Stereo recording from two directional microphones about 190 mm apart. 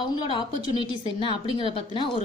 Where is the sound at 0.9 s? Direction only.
25° left (ahead or behind).